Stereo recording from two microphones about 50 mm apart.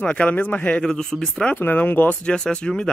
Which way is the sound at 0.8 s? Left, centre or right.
Centre.